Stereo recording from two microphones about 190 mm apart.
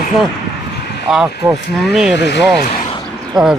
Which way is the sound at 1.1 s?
Centre (ahead or behind).